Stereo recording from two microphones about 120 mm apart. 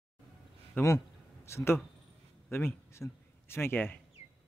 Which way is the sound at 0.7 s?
20° left (ahead or behind).